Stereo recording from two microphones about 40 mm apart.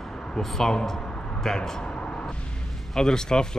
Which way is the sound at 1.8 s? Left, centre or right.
Left.